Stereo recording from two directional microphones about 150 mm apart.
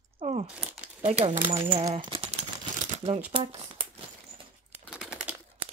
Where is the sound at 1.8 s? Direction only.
30° right (ahead or behind).